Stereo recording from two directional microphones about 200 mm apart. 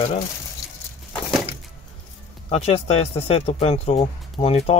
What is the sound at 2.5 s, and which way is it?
Speech, 30° left (ahead or behind).